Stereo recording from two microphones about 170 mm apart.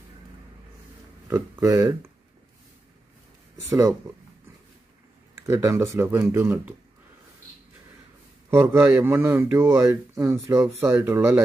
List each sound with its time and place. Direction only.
1.3 s speech: 20° right (ahead or behind)
5.3 s a man's voice: 15° right (ahead or behind)
8.5 s a man's voice: 15° right (ahead or behind)